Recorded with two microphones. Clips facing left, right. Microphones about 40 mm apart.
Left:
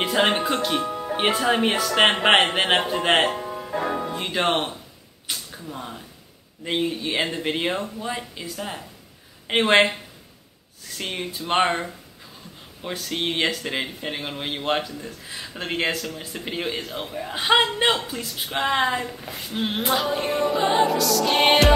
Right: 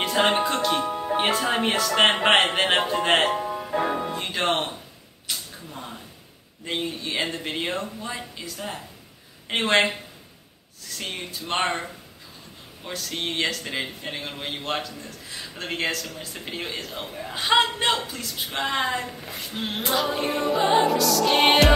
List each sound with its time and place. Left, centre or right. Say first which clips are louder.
0.0 s a man's voice: even; centre
0.8 s music: right 1 dB; centre
1.1 s a man's voice: left 2 dB; centre
3.3 s music: right 2 dB; centre
4.2 s a man's voice: left 4 dB; centre
5.3 s a sound: left 2 dB; centre
6.6 s a man's voice: left 4 dB; centre
11.0 s a man's voice: left 3 dB; centre
19.0 s music: left 1 dB; centre